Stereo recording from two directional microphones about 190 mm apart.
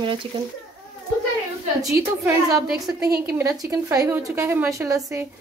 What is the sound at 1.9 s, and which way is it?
Speech, 15° right (ahead or behind).